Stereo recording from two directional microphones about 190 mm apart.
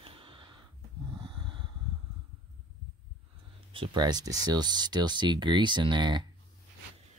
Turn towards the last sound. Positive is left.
turn(degrees=-25)  # may be behind; listen again after turning